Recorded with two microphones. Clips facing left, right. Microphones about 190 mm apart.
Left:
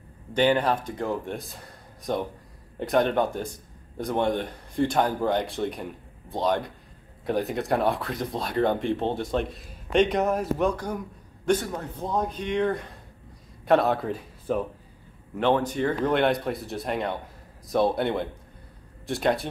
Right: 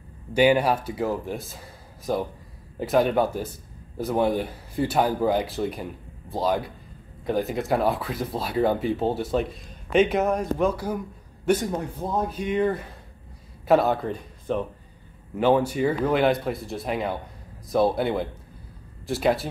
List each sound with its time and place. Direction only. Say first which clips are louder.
0.3 s speech: right 3 dB; 10° right (ahead or behind)
11.6 s speech: right 5 dB; 20° right (ahead or behind)
12.1 s speech: right 1 dB; 5° right (ahead or behind)
15.3 s speech: right 3 dB; 10° right (ahead or behind)